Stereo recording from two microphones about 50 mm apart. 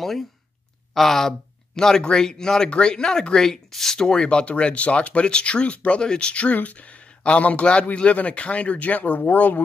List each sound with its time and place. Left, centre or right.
0.0 s speech: centre; by 9.6 s left